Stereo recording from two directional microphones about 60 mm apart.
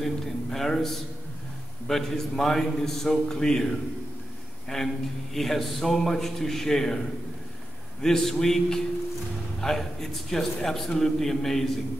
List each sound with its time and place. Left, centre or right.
0.0 s a sound: centre
1.9 s a man's voice: centre
8.0 s a man's voice: centre